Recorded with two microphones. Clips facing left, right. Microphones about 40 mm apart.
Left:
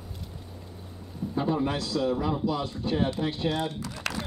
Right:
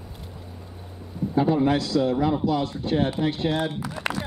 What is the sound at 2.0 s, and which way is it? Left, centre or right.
Speech, right.